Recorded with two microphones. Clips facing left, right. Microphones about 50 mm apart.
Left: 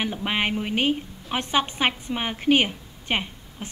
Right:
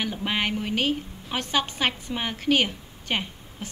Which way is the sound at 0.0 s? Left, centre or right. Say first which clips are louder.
Left 2 dB; centre.